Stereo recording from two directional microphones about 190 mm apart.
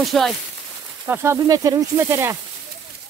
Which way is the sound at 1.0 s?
10° right (ahead or behind).